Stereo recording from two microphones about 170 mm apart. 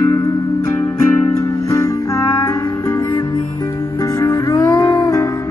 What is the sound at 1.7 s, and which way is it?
Music, 20° left (ahead or behind).